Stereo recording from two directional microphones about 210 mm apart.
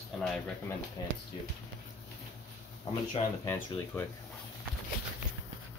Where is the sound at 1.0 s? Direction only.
20° left (ahead or behind).